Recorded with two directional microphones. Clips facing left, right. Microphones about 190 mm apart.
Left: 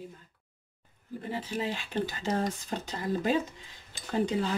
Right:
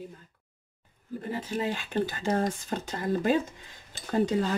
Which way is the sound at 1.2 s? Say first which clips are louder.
Right 2 dB; 45° right (ahead or behind).